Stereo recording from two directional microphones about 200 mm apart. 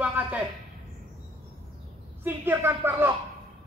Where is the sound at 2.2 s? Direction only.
10° right (ahead or behind).